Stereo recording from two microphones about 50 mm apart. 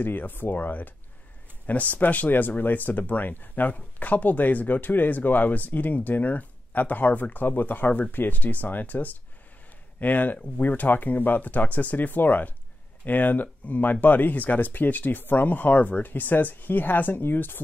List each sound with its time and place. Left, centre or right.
0.0 s speech: left